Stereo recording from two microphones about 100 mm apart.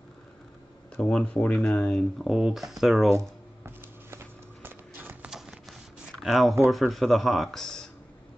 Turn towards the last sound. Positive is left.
turn(degrees=5)  # may be behind; listen again after turning